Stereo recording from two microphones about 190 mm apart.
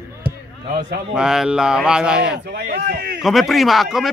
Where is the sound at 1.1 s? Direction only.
5° right (ahead or behind).